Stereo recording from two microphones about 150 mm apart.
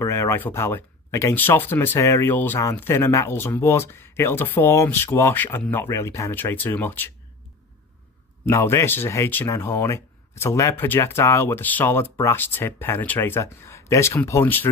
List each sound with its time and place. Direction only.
0.0 s speech: 20° left (ahead or behind)
8.5 s speech: 20° left (ahead or behind)